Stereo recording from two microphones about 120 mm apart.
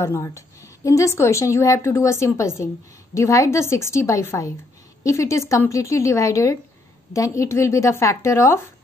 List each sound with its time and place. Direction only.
0.0 s a woman's voice: 25° left (ahead or behind)